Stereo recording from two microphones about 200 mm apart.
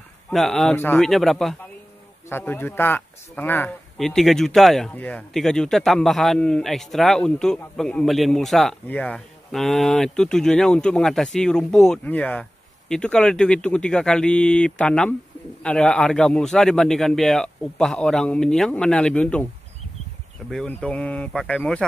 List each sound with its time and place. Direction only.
0.3 s speech: centre (ahead or behind)
2.2 s speech: 10° left (ahead or behind)
20.4 s speech: 5° left (ahead or behind)